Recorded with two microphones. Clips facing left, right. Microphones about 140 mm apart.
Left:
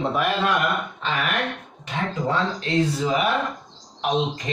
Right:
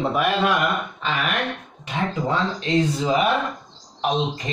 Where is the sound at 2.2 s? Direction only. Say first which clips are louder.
Right 1 dB; 20° right (ahead or behind).